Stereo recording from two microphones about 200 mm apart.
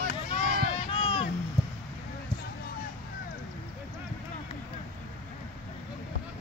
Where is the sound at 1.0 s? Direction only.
25° left (ahead or behind).